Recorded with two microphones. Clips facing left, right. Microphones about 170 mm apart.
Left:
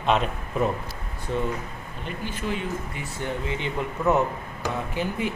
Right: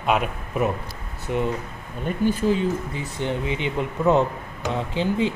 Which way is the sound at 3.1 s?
20° right (ahead or behind).